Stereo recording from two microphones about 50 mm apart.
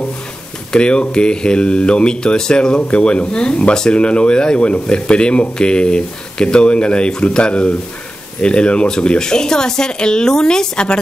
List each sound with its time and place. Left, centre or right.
0.7 s speech: centre